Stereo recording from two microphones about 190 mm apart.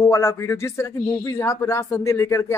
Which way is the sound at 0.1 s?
15° left (ahead or behind).